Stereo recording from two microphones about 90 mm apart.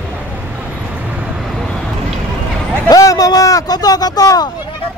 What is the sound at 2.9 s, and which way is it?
Speech, 40° left (ahead or behind).